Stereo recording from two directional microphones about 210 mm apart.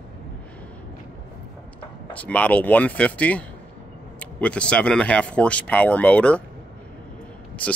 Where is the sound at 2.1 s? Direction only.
5° left (ahead or behind).